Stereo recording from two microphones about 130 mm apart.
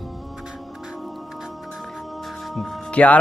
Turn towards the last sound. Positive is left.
turn(degrees=10)  # may be behind; listen again after turning